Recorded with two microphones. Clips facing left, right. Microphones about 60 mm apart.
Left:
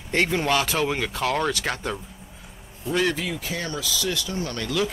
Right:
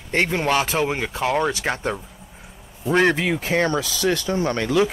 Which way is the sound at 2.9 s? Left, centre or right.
Right.